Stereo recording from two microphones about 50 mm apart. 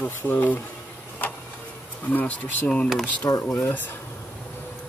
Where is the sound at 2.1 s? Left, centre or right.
Left.